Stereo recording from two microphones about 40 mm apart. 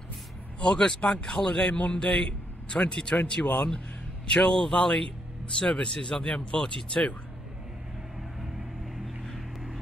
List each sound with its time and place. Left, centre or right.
0.6 s speech: left
1.7 s speech: left
2.7 s speech: left
8.4 s music: centre